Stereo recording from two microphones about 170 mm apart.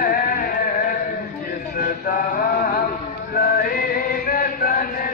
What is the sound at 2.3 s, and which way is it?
Mantra, 60° left (ahead or behind).